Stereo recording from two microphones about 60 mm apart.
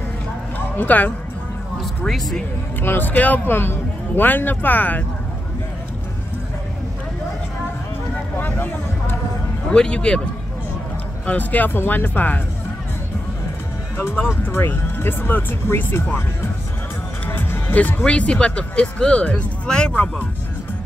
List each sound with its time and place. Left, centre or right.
0.7 s speech: left
2.0 s speech: centre
2.8 s speech: left
3.4 s speech: left
8.4 s vehicle: left
9.7 s speech: centre
11.2 s speech: left
14.3 s speech: left
17.3 s music: left
18.0 s speech: left